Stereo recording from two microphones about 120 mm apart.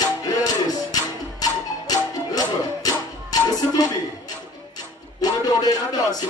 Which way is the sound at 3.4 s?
30° left (ahead or behind).